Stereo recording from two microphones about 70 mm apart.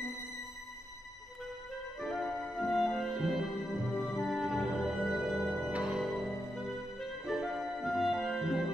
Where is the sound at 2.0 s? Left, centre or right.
Centre.